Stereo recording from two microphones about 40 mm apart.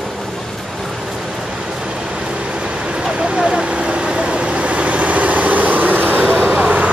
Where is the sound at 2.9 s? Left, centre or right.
Right.